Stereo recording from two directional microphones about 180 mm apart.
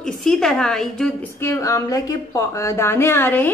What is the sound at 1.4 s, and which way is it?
A woman's voice, 15° left (ahead or behind).